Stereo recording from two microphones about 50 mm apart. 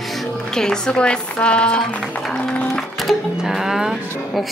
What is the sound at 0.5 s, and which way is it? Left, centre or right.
A woman's voice, centre.